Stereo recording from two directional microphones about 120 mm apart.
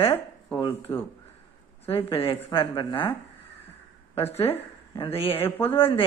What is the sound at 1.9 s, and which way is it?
Speech, 50° left (ahead or behind).